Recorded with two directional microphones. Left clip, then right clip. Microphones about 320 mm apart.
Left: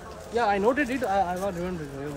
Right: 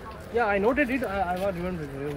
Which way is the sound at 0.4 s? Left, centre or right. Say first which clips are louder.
Even; centre.